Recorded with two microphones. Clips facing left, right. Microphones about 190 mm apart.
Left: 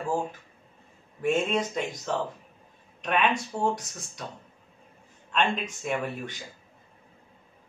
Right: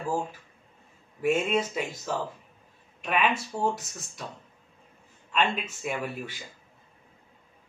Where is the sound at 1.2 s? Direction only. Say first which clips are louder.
Even; 10° right (ahead or behind).